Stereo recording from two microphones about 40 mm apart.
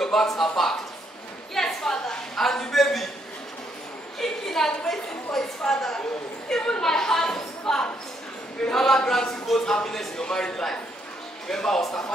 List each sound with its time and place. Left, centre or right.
0.0 s a woman's voice: centre
1.5 s a sound: centre
4.2 s a woman's voice: centre
10.2 s a woman's voice: left